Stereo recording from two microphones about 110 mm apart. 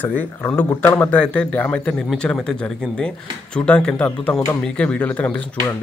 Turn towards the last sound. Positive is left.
turn(degrees=10)  # may be behind; listen again after turning